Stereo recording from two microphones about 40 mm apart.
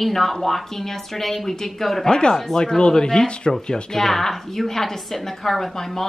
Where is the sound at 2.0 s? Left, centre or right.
Centre.